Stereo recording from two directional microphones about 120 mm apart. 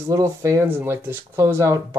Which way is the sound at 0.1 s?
25° right (ahead or behind).